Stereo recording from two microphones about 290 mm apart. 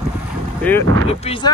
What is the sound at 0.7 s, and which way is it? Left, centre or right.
Speech, centre.